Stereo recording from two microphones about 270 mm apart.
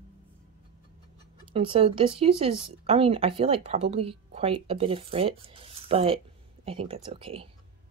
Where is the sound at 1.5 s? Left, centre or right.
Centre.